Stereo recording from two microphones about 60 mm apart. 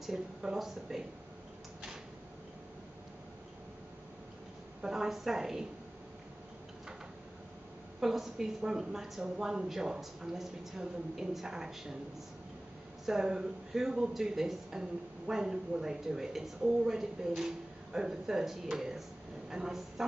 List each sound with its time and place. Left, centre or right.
0.0 s speech: centre
4.8 s speech: centre
8.0 s speech: centre
13.0 s speech: centre